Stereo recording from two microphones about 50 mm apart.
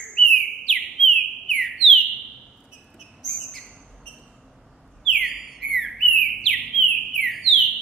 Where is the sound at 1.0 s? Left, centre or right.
Centre.